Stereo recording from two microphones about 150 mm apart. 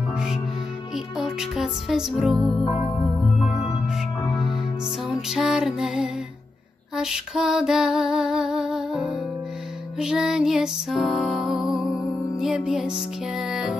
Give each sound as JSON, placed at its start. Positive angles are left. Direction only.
{"t": 0.9, "sound": "music", "side_deg": 0}